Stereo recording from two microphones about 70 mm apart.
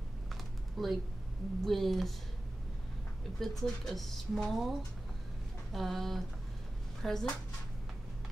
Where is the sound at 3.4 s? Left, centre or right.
Centre.